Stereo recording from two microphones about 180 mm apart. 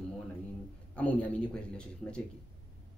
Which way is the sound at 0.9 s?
10° left (ahead or behind).